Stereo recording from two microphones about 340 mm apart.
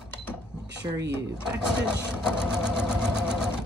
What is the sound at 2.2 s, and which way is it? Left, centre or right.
Sewing machine, centre.